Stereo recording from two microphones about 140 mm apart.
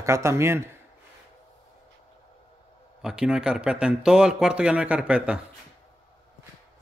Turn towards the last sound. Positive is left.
turn(degrees=-5)  # may be behind; listen again after turning